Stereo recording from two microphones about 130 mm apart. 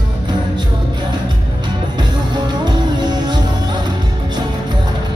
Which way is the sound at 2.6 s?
35° right (ahead or behind).